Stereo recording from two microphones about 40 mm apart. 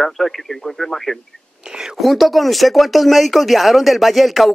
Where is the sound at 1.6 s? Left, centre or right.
Centre.